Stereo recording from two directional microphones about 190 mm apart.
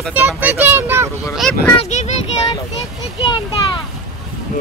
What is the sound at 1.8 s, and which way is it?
Speech, 35° left (ahead or behind).